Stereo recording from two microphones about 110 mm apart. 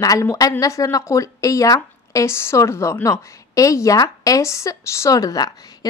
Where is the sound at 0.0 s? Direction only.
30° left (ahead or behind).